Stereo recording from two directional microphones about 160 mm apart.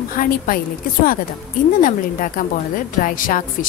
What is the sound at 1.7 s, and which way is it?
A woman's voice, 55° left (ahead or behind).